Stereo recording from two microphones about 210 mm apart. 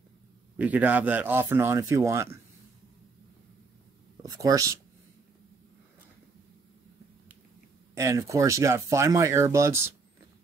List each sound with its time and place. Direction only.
0.6 s speech: 5° right (ahead or behind)
4.2 s speech: 15° right (ahead or behind)
7.9 s speech: 15° right (ahead or behind)